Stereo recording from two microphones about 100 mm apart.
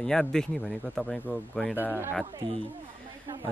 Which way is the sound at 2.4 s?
55° right (ahead or behind).